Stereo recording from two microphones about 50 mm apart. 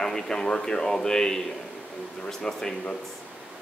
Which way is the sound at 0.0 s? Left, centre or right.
Centre.